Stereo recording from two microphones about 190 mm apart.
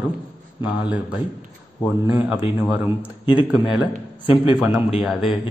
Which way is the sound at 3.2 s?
25° left (ahead or behind).